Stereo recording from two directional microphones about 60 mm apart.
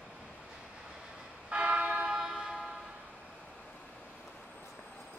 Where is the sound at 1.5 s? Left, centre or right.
Right.